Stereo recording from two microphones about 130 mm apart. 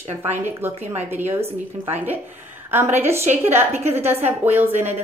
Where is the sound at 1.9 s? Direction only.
15° right (ahead or behind).